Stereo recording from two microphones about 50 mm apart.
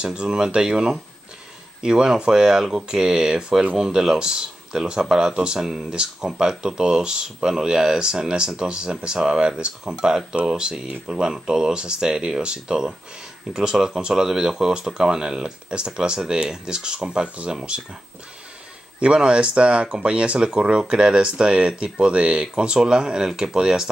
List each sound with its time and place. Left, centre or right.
0.0 s speech: centre
18.9 s speech: right